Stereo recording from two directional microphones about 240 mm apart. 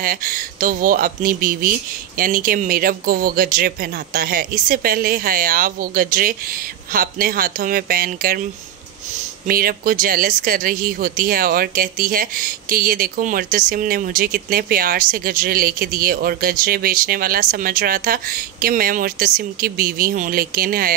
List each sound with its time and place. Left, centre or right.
0.0 s speech: right
9.5 s speech: right